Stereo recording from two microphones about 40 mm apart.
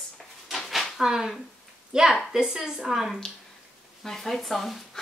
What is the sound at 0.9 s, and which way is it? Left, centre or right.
Speech, centre.